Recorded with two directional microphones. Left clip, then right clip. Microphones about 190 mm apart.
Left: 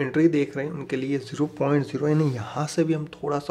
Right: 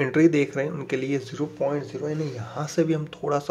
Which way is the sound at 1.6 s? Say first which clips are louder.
Left 3 dB; 40° left (ahead or behind).